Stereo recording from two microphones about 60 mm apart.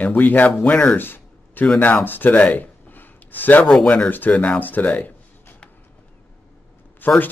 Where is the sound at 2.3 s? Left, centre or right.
Left.